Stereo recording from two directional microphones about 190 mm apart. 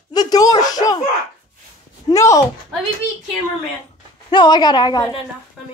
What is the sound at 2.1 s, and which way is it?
Speech, 15° left (ahead or behind).